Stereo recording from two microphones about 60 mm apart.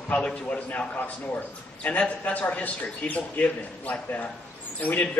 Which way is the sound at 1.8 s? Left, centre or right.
Left.